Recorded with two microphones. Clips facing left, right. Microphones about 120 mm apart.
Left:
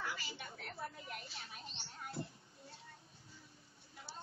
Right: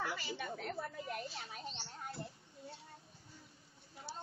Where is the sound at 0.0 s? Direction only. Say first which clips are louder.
Right 5 dB; 50° right (ahead or behind).